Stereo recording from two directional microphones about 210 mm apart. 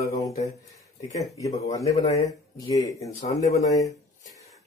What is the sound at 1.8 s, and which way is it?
Speech, 30° left (ahead or behind).